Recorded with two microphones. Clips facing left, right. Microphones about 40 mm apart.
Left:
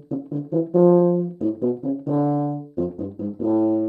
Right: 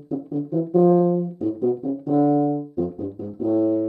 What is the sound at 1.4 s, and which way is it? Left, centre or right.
Music, centre.